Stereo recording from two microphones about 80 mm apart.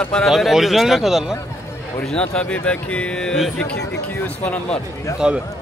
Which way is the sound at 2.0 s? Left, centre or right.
Centre.